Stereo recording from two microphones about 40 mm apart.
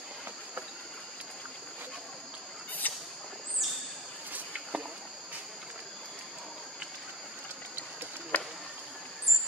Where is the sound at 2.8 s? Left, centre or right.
Left.